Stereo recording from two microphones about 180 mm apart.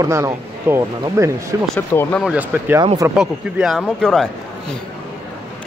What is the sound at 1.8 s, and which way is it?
Speech, 10° left (ahead or behind).